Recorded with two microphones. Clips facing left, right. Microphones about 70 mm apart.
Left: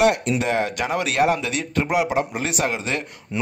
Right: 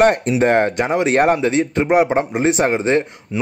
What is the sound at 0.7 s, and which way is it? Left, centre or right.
Speech, right.